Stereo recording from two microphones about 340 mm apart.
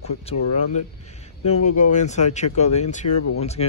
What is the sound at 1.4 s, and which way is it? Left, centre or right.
Speech, centre.